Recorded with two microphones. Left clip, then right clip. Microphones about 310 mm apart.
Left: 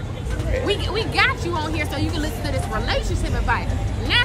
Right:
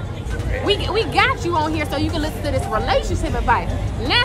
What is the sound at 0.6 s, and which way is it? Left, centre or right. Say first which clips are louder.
A woman's voice: right 6 dB; centre.